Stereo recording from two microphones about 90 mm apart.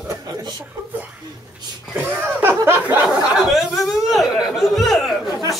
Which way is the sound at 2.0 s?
20° right (ahead or behind).